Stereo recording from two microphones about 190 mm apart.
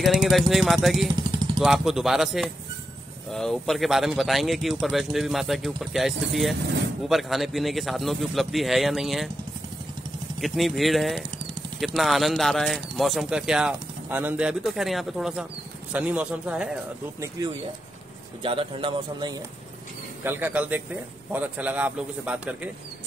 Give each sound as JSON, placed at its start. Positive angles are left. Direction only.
{"t": 0.0, "sound": "speech", "side_deg": 0}
{"t": 10.4, "sound": "a man's voice", "side_deg": 0}
{"t": 18.4, "sound": "speech", "side_deg": -30}
{"t": 20.2, "sound": "a man's voice", "side_deg": -10}